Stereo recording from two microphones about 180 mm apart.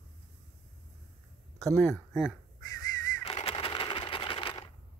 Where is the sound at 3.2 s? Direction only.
30° left (ahead or behind).